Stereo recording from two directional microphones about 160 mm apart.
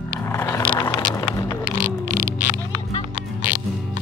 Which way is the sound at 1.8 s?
55° right (ahead or behind).